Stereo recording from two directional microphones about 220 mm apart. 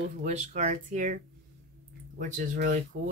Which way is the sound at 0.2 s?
30° right (ahead or behind).